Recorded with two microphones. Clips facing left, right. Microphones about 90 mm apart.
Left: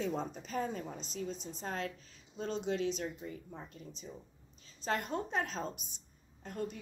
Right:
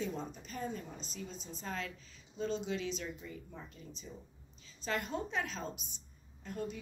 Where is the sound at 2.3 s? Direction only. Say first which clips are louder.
Left 1 dB; 55° left (ahead or behind).